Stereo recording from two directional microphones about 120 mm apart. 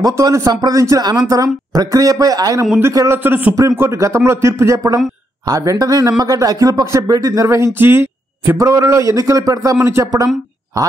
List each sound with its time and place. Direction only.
0.0 s speech: 30° right (ahead or behind)
3.2 s a man's voice: 15° right (ahead or behind)